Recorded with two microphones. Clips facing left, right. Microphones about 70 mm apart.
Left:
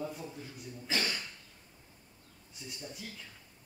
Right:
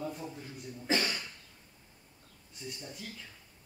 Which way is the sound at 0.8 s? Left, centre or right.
Right.